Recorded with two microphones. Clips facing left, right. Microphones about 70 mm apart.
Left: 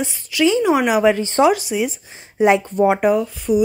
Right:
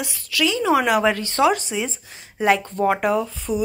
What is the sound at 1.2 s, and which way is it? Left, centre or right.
Speech, left.